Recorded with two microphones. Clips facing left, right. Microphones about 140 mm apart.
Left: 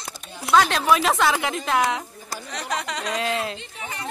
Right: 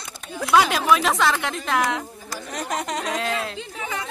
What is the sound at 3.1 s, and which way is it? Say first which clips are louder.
Speech: left 4 dB; centre (ahead or behind).